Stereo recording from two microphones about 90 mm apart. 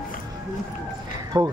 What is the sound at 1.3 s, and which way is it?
Speech, 55° right (ahead or behind).